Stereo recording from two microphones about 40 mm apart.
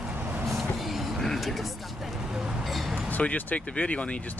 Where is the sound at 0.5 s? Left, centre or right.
Centre.